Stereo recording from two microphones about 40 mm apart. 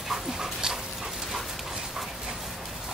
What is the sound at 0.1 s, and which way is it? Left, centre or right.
Dog, centre.